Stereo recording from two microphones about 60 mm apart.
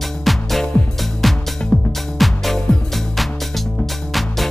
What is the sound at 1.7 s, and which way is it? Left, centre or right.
Music, centre.